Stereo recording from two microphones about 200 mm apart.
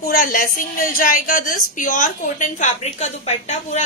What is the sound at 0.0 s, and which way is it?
A woman's voice, 45° left (ahead or behind).